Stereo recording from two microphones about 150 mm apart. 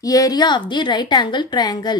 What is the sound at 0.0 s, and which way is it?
A woman's voice, 25° left (ahead or behind).